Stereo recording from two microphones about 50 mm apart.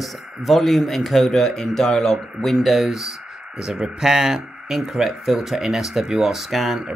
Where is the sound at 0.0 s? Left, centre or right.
Centre.